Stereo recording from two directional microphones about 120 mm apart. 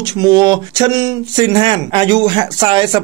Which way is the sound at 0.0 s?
35° right (ahead or behind).